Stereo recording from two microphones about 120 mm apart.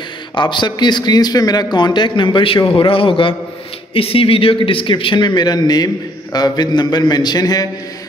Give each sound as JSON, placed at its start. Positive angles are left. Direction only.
{"t": 0.3, "sound": "a man's voice", "side_deg": 40}